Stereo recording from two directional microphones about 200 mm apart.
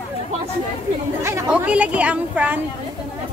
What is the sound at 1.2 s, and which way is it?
Speech, 10° right (ahead or behind).